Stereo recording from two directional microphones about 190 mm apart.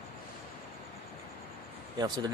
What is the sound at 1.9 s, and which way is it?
Speech, 20° right (ahead or behind).